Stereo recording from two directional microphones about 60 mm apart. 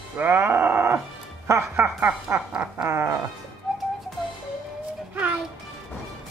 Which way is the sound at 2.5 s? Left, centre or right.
Centre.